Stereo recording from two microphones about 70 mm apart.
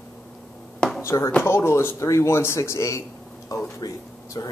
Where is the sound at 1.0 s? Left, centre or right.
Left.